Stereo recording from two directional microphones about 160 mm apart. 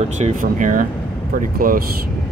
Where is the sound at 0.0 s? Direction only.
50° right (ahead or behind).